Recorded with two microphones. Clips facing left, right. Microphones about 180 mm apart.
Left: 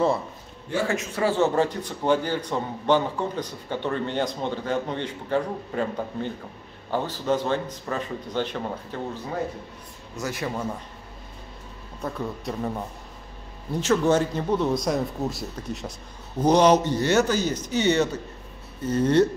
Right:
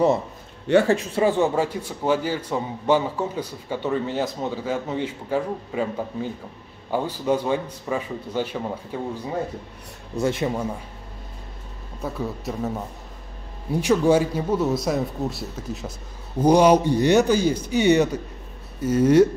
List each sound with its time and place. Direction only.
0.8 s speech: 35° right (ahead or behind)
1.2 s a man's voice: 15° right (ahead or behind)
10.1 s speech: 25° right (ahead or behind)
12.0 s a man's voice: 5° right (ahead or behind)